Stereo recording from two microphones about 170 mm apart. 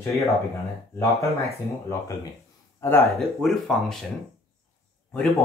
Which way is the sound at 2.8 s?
15° left (ahead or behind).